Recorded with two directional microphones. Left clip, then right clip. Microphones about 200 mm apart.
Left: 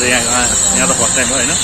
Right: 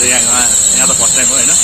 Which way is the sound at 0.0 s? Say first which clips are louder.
Right 1 dB; 20° right (ahead or behind).